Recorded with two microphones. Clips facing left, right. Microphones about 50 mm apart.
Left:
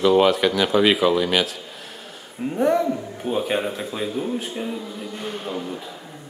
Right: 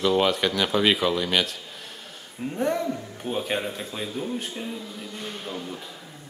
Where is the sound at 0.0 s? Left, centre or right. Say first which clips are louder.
Left 5 dB; centre.